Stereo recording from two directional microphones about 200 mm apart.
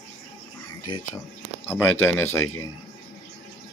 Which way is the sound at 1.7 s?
10° left (ahead or behind).